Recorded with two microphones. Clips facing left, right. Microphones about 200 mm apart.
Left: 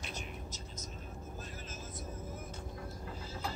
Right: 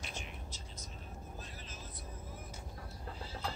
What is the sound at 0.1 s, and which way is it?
Whispering, 40° left (ahead or behind).